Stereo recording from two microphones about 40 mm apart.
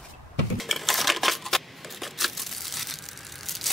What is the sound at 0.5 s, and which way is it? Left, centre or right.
Dishes, centre.